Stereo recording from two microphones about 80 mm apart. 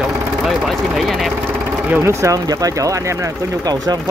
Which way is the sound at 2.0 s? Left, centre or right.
Right.